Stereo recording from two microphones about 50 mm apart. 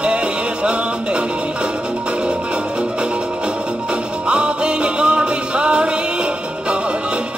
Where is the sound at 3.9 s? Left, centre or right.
Right.